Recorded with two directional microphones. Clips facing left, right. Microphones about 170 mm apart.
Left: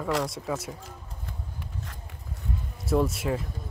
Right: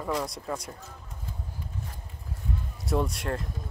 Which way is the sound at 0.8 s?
75° left (ahead or behind).